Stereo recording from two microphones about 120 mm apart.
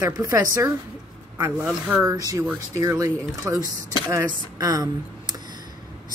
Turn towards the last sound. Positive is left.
turn(degrees=-30)  # may be behind; listen again after turning